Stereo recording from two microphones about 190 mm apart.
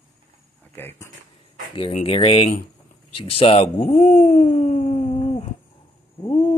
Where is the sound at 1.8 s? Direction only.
30° left (ahead or behind).